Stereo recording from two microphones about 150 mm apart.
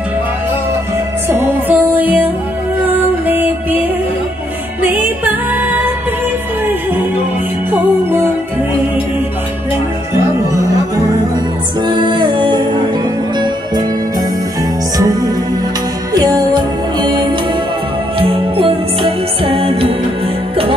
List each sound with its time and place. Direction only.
1.3 s music: 15° right (ahead or behind)
4.8 s music: 10° right (ahead or behind)
7.7 s music: 15° right (ahead or behind)
11.8 s music: 30° right (ahead or behind)
15.0 s music: 25° right (ahead or behind)
18.2 s music: 35° right (ahead or behind)